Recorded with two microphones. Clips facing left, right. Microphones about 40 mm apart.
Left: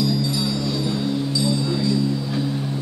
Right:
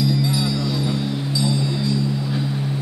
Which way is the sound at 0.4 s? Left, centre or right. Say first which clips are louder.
Right 1 dB; centre.